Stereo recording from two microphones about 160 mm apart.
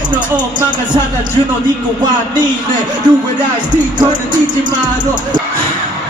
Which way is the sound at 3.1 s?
30° right (ahead or behind).